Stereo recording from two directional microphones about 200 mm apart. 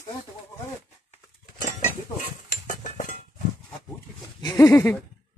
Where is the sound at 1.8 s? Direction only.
40° left (ahead or behind).